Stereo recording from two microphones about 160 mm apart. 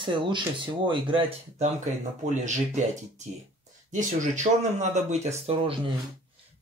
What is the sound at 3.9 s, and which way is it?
Speech, 50° right (ahead or behind).